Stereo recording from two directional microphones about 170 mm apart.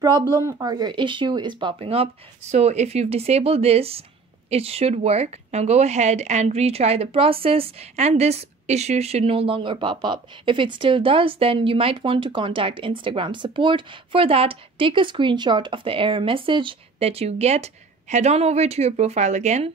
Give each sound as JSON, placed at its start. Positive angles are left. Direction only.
{"t": 0.0, "sound": "speech", "side_deg": -25}